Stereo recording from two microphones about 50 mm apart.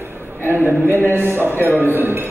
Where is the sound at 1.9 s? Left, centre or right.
Right.